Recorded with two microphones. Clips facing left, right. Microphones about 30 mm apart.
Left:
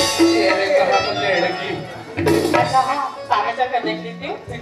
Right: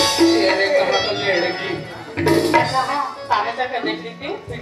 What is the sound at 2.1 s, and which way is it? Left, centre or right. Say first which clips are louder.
Music: even; right.